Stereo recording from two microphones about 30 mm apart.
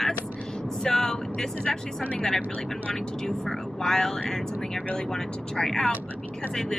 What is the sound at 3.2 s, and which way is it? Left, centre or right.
Speech, centre.